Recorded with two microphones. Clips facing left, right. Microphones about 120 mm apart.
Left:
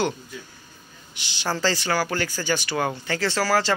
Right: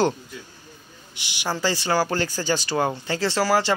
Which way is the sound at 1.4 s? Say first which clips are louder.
Even; 15° right (ahead or behind).